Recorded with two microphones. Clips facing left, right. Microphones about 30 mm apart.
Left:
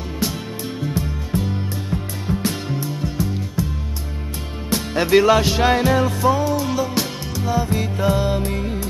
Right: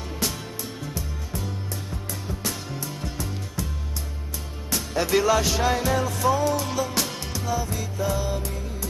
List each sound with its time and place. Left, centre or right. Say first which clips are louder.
0.2 s music: left 4 dB; centre
0.7 s music: left 9 dB; left
3.0 s music: left 8 dB; centre
4.6 s music: left 6 dB; left
6.4 s music: left 4 dB; centre
7.4 s music: left 8 dB; left